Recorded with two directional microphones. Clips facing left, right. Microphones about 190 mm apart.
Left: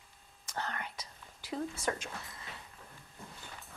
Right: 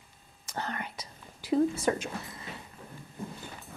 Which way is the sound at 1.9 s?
15° right (ahead or behind).